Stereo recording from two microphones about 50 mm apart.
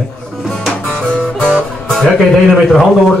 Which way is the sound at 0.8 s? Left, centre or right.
Centre.